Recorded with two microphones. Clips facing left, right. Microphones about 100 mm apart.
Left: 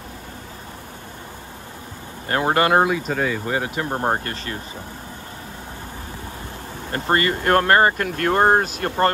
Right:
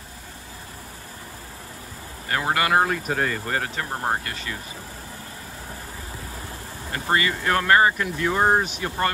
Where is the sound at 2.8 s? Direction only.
Centre (ahead or behind).